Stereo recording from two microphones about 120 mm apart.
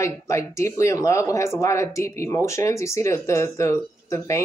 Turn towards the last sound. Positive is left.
turn(degrees=25)  # may be behind; listen again after turning